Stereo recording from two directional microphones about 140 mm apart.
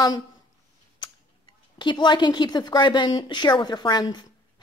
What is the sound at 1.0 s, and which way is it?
Speech, 35° left (ahead or behind).